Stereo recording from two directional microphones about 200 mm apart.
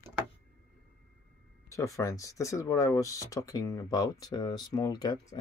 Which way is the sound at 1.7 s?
15° left (ahead or behind).